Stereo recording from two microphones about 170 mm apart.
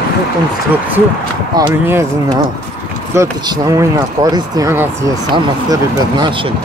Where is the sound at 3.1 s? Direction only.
25° right (ahead or behind).